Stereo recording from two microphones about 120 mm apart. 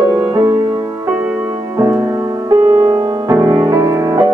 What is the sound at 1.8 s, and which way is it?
Music, 25° right (ahead or behind).